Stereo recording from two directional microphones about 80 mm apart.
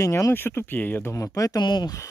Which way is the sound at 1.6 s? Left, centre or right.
Left.